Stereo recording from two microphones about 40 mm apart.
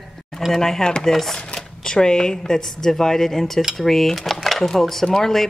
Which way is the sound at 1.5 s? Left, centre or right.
Centre.